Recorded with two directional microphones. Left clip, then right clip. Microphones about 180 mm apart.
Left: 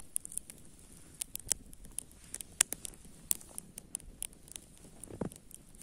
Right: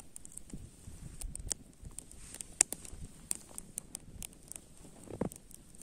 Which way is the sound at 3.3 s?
Centre (ahead or behind).